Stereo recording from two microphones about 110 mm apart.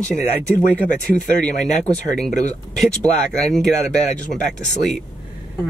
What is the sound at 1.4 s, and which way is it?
Speech, 5° left (ahead or behind).